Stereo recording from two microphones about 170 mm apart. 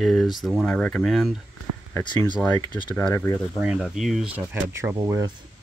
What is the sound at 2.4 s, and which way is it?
Speech, 20° left (ahead or behind).